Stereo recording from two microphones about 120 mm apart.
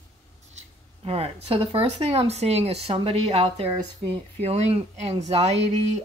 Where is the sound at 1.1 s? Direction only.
55° right (ahead or behind).